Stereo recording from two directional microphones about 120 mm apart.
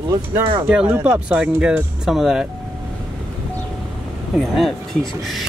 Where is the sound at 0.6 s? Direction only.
10° right (ahead or behind).